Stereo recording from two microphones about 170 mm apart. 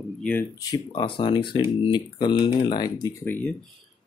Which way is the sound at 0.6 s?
25° left (ahead or behind).